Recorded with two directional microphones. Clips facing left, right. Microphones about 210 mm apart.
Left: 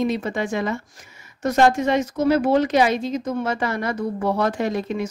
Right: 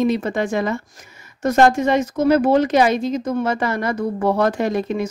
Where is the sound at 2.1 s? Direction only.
45° right (ahead or behind).